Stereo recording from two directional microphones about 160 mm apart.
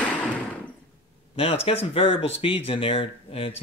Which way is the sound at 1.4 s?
35° left (ahead or behind).